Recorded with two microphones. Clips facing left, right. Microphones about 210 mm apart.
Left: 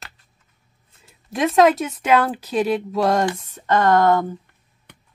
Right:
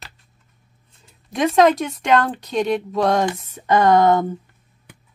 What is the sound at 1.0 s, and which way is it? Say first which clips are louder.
Speech: right 1 dB; centre (ahead or behind).